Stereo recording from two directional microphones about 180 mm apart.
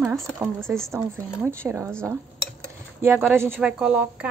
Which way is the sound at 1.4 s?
15° right (ahead or behind).